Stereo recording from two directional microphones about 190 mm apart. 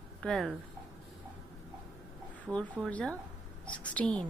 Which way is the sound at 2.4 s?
5° left (ahead or behind).